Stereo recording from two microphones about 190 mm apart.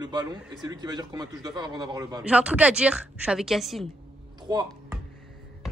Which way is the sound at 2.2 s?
5° right (ahead or behind).